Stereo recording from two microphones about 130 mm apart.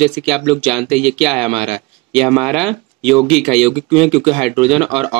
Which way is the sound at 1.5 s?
50° right (ahead or behind).